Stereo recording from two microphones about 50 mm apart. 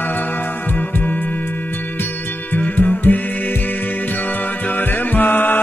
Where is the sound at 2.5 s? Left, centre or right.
Left.